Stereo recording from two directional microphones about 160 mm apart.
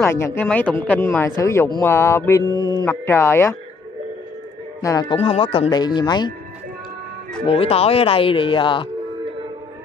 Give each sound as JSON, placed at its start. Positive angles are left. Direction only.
{"t": 0.0, "sound": "speech", "side_deg": 15}
{"t": 2.8, "sound": "speech", "side_deg": 15}
{"t": 5.1, "sound": "speech", "side_deg": 35}
{"t": 7.4, "sound": "speech", "side_deg": 35}